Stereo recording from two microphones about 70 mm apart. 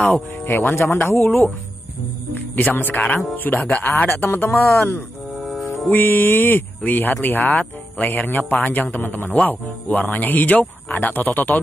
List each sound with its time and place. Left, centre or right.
0.0 s speech: left
2.3 s speech: left
5.3 s music: centre
5.9 s speech: left